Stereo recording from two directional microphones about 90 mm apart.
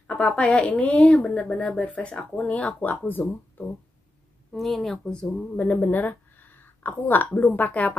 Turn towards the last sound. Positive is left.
turn(degrees=20)  # may be behind; listen again after turning